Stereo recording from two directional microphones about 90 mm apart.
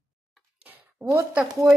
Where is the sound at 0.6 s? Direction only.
20° right (ahead or behind).